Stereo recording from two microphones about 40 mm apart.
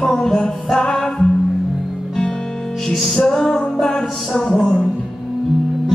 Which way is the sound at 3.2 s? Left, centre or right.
Centre.